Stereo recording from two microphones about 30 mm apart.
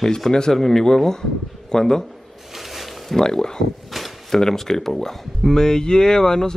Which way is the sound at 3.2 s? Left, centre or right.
Left.